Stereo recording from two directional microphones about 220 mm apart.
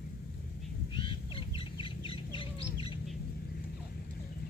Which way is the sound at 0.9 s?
25° left (ahead or behind).